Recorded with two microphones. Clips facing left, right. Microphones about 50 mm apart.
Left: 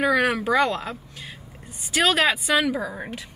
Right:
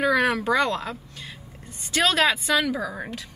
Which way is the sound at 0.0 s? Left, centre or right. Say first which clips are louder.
Even; centre.